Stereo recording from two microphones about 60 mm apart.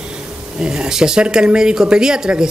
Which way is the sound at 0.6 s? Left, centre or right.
Centre.